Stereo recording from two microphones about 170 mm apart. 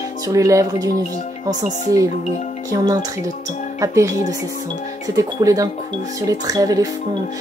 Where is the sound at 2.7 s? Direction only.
20° right (ahead or behind).